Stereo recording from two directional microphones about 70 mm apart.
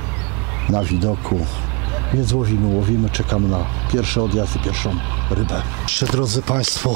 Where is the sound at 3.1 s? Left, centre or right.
Right.